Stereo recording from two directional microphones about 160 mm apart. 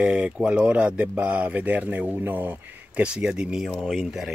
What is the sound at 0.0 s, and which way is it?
Speech, 5° right (ahead or behind).